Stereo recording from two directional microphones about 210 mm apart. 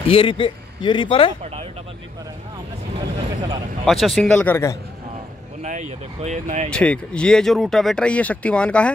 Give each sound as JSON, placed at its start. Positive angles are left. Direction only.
{"t": 0.0, "sound": "a man's voice", "side_deg": 25}
{"t": 3.8, "sound": "speech", "side_deg": 0}
{"t": 5.6, "sound": "speech", "side_deg": -35}
{"t": 6.7, "sound": "speech", "side_deg": 5}